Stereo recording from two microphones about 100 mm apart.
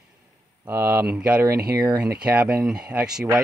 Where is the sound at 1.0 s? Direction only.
10° right (ahead or behind).